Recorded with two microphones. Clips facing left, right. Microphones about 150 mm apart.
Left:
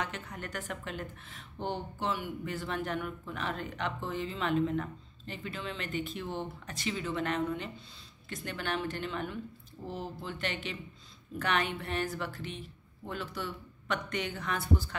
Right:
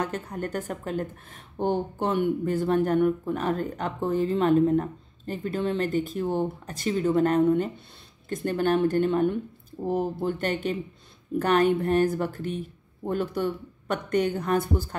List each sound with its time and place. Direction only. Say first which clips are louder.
0.0 s speech: right 9 dB; 45° right (ahead or behind)